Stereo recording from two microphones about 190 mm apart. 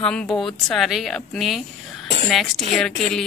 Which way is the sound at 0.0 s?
5° left (ahead or behind).